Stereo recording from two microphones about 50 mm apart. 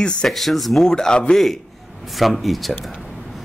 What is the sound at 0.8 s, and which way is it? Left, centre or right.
Speech, centre.